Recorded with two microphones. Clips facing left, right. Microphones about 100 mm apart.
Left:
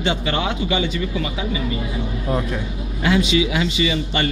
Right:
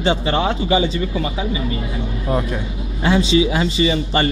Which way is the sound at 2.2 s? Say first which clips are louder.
Right 2 dB; 15° right (ahead or behind).